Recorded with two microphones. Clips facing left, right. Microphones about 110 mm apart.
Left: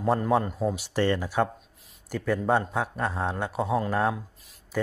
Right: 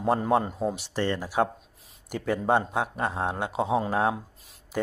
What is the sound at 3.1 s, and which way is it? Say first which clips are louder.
Speech: right 1 dB; 15° right (ahead or behind).